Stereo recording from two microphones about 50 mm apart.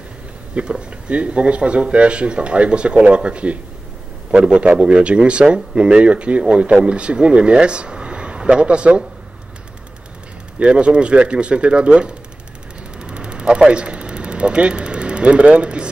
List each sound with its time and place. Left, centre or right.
0.6 s a man's voice: centre
10.6 s a man's voice: right
13.0 s vehicle: centre